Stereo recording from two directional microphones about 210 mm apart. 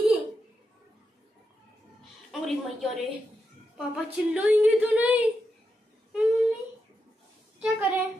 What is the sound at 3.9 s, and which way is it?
Speech, 5° right (ahead or behind).